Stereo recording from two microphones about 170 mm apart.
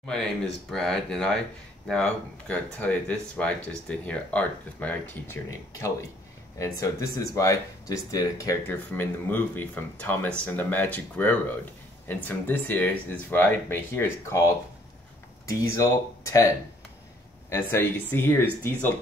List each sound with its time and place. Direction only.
0.7 s speech: 5° left (ahead or behind)
17.5 s speech: 15° left (ahead or behind)